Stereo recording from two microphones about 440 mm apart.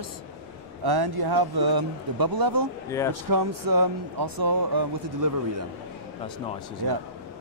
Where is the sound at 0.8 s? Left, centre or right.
Right.